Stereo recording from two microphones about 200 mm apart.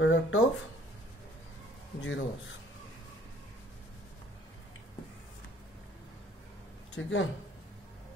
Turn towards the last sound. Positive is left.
turn(degrees=70)  # may be behind; listen again after turning